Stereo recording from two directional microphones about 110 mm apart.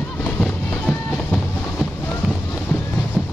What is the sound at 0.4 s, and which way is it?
Music, 10° left (ahead or behind).